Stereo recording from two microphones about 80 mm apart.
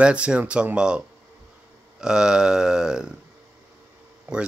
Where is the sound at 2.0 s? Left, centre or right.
Centre.